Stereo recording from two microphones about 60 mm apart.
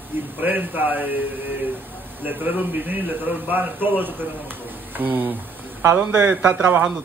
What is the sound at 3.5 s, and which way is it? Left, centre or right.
Speech, right.